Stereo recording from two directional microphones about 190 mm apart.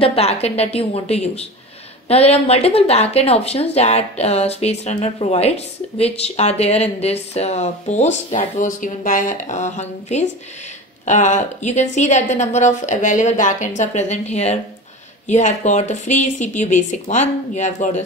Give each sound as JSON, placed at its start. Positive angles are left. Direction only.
{"t": 0.0, "sound": "a woman's voice", "side_deg": 30}